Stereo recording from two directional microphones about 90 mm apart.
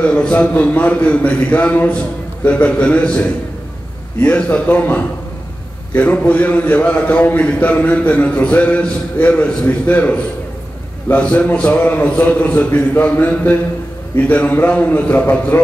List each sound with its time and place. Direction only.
0.0 s a man's voice: 15° left (ahead or behind)